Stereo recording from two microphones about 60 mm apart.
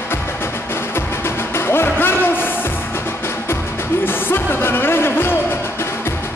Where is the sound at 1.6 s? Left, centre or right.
Left.